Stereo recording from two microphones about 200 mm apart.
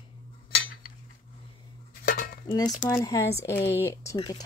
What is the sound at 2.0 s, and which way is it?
Cutlery, 45° left (ahead or behind).